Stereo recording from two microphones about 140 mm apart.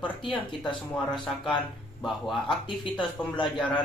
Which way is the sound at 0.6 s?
Centre (ahead or behind).